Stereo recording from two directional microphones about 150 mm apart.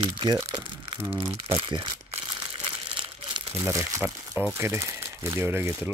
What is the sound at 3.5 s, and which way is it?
Speech, 20° right (ahead or behind).